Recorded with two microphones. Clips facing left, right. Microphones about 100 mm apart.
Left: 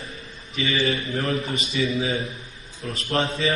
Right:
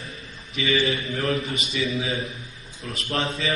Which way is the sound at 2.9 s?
35° left (ahead or behind).